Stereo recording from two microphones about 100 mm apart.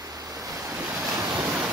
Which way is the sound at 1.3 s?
15° right (ahead or behind).